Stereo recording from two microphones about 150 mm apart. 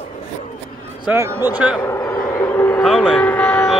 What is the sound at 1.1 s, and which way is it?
Speech, 15° right (ahead or behind).